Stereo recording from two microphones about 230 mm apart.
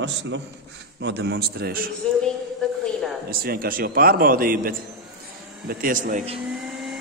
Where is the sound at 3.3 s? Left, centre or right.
Right.